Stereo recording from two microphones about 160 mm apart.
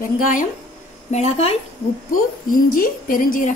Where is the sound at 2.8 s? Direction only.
60° left (ahead or behind).